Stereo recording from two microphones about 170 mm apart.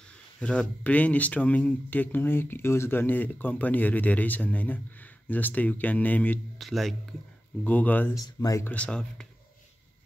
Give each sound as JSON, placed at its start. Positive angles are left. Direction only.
{"t": 0.4, "sound": "speech", "side_deg": 5}
{"t": 8.2, "sound": "speech", "side_deg": 20}
{"t": 8.7, "sound": "speech", "side_deg": 5}